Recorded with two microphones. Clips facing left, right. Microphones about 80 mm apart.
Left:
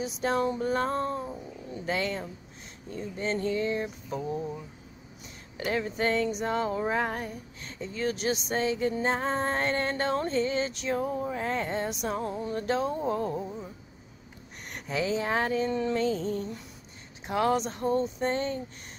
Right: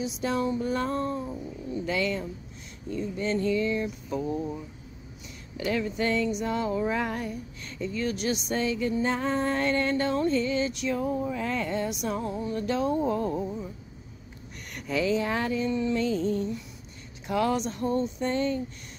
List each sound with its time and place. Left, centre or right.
0.0 s music: left
4.2 s speech: centre
5.7 s music: left
14.7 s music: left
17.3 s music: left